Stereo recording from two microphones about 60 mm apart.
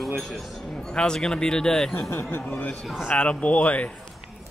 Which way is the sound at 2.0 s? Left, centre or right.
Left.